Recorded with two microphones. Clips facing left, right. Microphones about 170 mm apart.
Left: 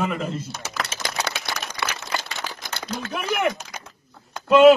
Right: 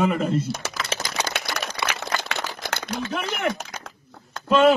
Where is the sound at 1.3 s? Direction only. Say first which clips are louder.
Right 2 dB; 60° right (ahead or behind).